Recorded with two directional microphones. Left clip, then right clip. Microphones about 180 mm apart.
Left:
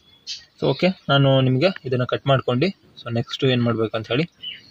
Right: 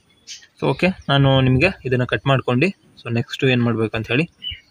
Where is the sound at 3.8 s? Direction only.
Centre (ahead or behind).